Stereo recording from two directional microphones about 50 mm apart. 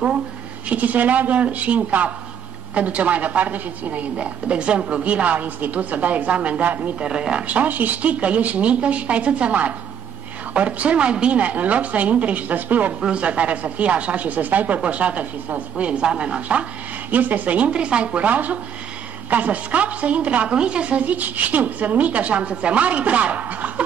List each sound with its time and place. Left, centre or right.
0.7 s a man's voice: right
7.0 s speech: centre
7.4 s a woman's voice: right
13.0 s a woman's voice: right